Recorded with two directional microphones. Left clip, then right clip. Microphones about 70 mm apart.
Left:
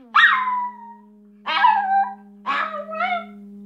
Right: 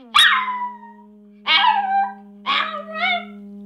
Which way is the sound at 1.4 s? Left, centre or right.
Centre.